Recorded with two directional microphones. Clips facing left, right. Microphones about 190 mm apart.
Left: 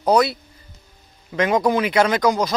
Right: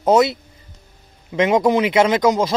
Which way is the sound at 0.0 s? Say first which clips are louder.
Right 2 dB; 25° right (ahead or behind).